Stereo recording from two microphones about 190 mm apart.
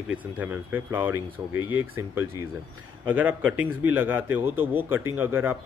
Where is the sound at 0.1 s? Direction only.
10° right (ahead or behind).